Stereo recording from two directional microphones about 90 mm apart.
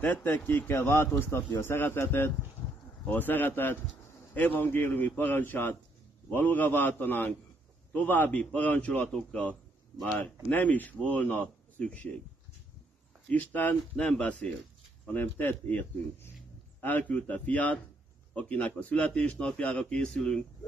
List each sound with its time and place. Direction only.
0.0 s a man's voice: 20° left (ahead or behind)
13.3 s a man's voice: 15° left (ahead or behind)